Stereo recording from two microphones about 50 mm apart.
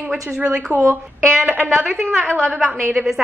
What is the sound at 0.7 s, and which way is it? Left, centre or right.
Speech, right.